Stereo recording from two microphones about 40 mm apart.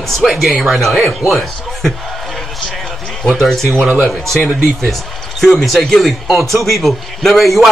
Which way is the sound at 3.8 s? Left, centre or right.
Right.